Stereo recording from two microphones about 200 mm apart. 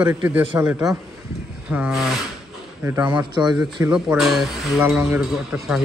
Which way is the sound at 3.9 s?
5° right (ahead or behind).